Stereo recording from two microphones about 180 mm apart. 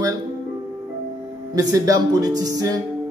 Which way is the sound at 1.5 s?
20° right (ahead or behind).